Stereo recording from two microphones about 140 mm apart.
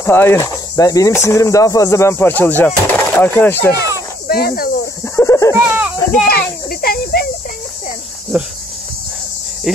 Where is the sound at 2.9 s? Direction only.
15° left (ahead or behind).